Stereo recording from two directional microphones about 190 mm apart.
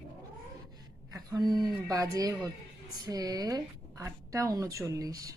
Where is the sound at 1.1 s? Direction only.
20° right (ahead or behind).